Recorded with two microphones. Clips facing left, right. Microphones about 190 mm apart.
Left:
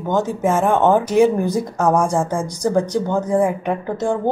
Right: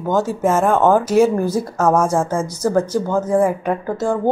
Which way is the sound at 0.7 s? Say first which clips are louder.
Even; 20° left (ahead or behind).